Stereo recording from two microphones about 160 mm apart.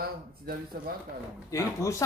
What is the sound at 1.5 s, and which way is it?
Speech, 20° left (ahead or behind).